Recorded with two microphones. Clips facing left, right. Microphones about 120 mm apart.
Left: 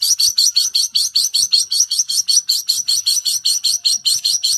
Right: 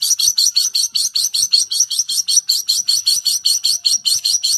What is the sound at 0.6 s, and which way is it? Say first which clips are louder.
Bird: left 1 dB; 45° right (ahead or behind).